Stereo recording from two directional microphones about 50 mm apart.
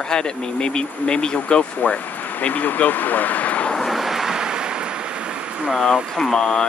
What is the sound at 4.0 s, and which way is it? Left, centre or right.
Ocean, centre.